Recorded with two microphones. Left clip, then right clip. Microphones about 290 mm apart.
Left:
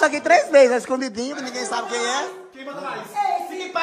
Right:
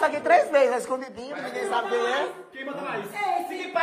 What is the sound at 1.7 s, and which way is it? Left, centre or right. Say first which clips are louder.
Speech: left 1 dB; centre.